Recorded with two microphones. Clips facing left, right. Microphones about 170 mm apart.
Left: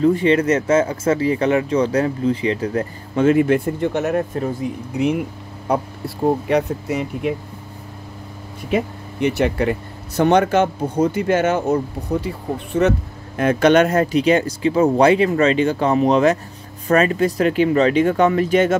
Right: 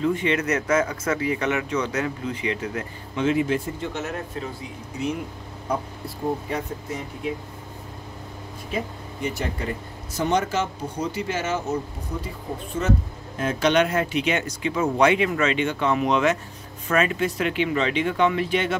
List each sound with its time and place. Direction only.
0.0 s speech: 35° left (ahead or behind); by 4.5 s 55° left (ahead or behind)
4.9 s speech: 65° left (ahead or behind)
8.6 s speech: 70° left (ahead or behind)
12.8 s speech: 70° left (ahead or behind)
13.4 s speech: 55° left (ahead or behind)